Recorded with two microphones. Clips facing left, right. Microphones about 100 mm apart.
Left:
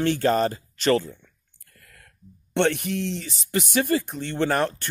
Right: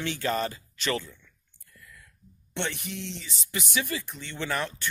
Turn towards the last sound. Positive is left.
turn(degrees=50)  # may be behind; listen again after turning